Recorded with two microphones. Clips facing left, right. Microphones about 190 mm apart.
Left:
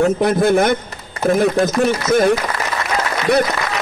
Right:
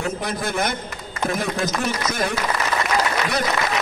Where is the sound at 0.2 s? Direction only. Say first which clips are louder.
Left 11 dB; 60° left (ahead or behind).